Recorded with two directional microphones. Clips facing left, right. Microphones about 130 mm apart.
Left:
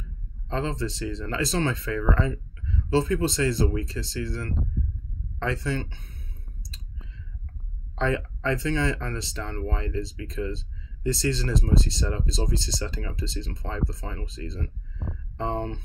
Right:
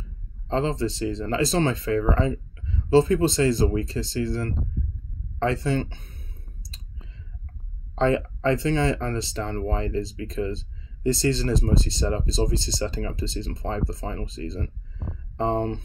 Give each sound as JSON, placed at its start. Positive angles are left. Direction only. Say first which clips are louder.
{"t": 0.5, "sound": "speech", "louder": "right 4 dB", "side_deg": -25}
{"t": 7.9, "sound": "speech", "louder": "right 5 dB", "side_deg": -30}